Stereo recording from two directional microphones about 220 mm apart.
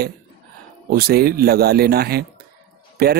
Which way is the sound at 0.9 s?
45° right (ahead or behind).